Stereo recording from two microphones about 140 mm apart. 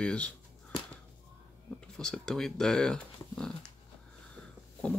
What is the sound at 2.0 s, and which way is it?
Speech, 5° left (ahead or behind).